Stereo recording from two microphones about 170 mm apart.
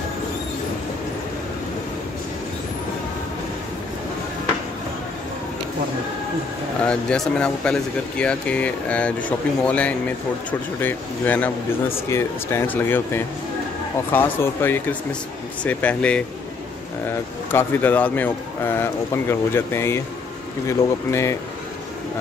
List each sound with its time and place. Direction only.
6.9 s speech: 5° left (ahead or behind)